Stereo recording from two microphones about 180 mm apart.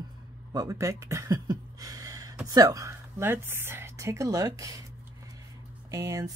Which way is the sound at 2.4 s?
20° right (ahead or behind).